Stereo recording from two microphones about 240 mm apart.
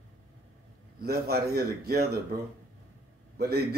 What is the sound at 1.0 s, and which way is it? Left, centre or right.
Speech, right.